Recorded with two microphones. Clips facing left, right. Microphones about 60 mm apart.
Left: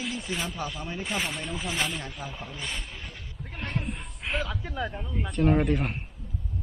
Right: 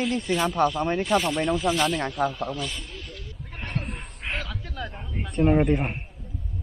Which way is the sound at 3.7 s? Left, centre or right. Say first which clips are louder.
Right 1 dB; centre.